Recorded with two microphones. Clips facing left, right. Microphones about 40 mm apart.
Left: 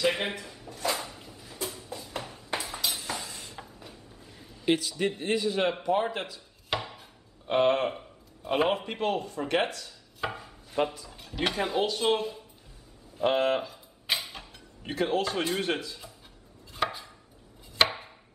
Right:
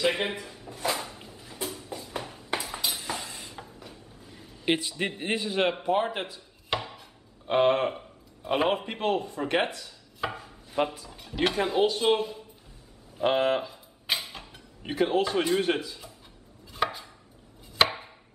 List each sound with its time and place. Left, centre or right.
0.0 s a man's voice: centre
0.8 s a sound: centre
1.2 s a sound: right
1.5 s a sound: centre
4.6 s a man's voice: right
6.7 s chopping: centre
7.4 s a man's voice: centre
10.2 s chopping: centre
10.8 s a man's voice: centre
16.7 s chopping: centre